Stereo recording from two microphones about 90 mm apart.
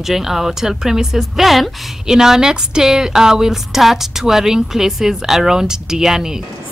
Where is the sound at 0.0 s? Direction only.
5° right (ahead or behind).